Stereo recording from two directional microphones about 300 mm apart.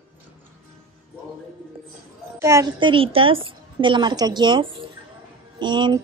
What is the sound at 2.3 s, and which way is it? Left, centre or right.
A woman's voice, centre.